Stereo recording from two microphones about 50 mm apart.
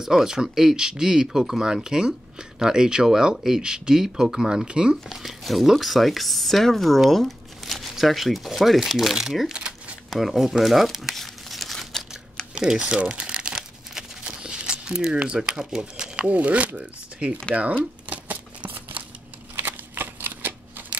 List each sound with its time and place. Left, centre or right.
0.0 s speech: centre
5.0 s speech: centre
9.5 s crumpling: centre
10.0 s crumpling: centre
12.5 s crumpling: centre
14.3 s speech: right
18.0 s a sound: right
19.5 s shuffling cards: right